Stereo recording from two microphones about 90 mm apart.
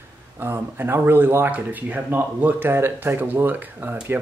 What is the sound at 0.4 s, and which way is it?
Speech, 25° right (ahead or behind).